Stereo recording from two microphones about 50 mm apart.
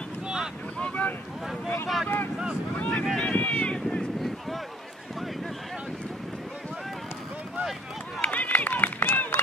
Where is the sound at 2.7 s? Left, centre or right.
Left.